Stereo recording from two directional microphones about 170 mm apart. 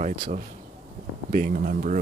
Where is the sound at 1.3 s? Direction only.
55° right (ahead or behind).